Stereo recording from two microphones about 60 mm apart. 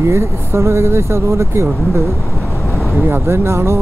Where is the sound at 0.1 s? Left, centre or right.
Right.